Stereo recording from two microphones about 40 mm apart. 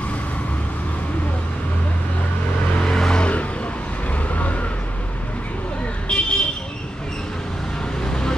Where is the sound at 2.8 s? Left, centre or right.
Centre.